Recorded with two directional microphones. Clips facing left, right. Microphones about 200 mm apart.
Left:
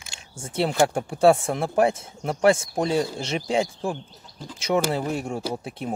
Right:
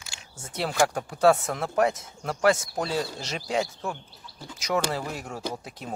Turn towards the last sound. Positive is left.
turn(degrees=25)  # may be behind; listen again after turning